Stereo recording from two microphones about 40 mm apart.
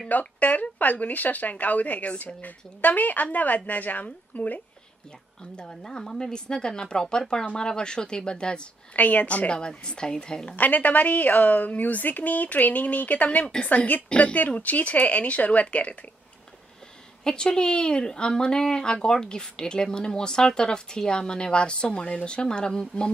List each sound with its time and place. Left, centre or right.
0.1 s speech: left
5.6 s a woman's voice: left
8.9 s a woman's voice: left
9.6 s a woman's voice: left
10.5 s a woman's voice: left
17.2 s a woman's voice: centre